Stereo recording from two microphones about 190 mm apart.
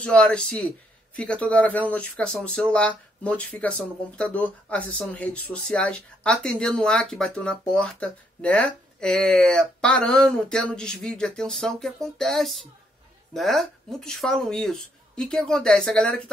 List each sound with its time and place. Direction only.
0.0 s speech: 5° left (ahead or behind)